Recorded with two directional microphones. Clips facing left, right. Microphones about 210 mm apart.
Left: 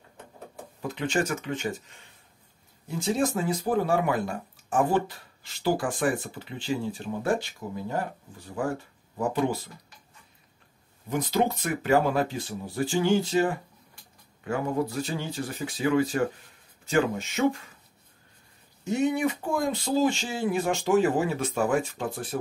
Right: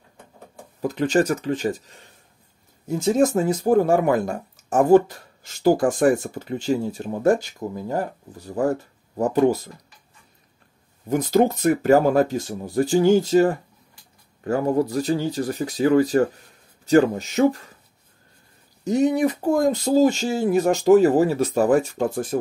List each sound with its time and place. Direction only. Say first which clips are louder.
0.8 s speech: right 8 dB; 40° right (ahead or behind)
11.1 s speech: right 7 dB; 45° right (ahead or behind)
18.9 s speech: right 6 dB; 40° right (ahead or behind)